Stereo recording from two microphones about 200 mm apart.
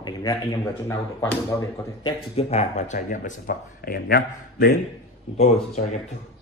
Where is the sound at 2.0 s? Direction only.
30° left (ahead or behind); by 4.7 s 50° left (ahead or behind).